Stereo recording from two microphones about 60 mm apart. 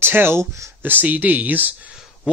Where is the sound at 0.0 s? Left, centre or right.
Right.